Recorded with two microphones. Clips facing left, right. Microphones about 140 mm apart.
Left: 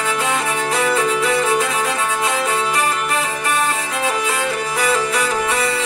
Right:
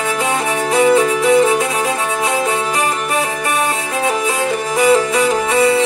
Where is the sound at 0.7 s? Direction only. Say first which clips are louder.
Right 9 dB; 20° right (ahead or behind).